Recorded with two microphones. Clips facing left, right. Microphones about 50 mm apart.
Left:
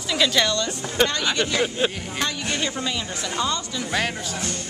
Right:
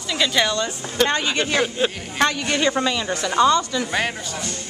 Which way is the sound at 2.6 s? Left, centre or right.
Right.